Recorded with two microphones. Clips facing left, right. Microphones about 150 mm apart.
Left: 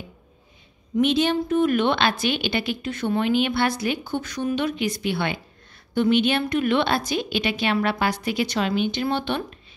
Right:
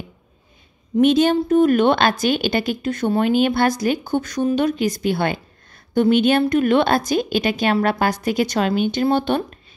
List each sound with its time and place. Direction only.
1.0 s a woman's voice: 45° right (ahead or behind)